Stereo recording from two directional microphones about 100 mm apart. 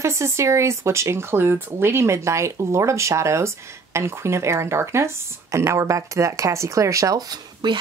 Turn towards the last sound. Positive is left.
turn(degrees=-45)  # may be behind; listen again after turning